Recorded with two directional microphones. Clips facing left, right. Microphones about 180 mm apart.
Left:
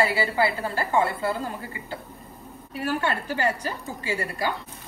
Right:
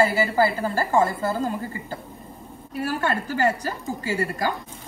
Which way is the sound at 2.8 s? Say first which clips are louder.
Right 1 dB; 40° right (ahead or behind).